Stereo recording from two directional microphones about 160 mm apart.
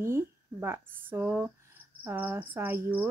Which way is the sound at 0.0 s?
15° right (ahead or behind).